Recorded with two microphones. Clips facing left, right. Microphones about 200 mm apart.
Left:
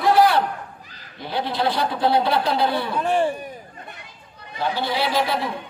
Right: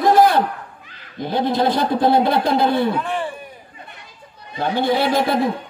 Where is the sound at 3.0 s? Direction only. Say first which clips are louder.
Left 5 dB; 40° left (ahead or behind).